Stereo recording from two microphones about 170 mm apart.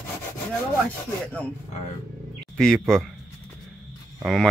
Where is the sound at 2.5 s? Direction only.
5° left (ahead or behind).